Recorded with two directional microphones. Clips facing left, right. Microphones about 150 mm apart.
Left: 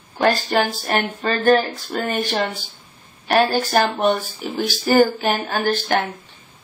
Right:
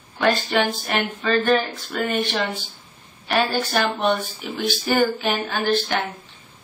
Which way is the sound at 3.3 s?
40° left (ahead or behind).